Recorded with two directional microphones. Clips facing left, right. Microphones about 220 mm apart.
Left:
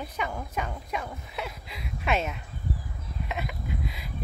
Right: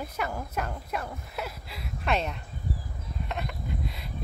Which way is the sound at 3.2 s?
Centre (ahead or behind).